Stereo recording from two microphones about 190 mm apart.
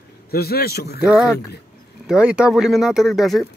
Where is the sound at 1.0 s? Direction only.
5° right (ahead or behind).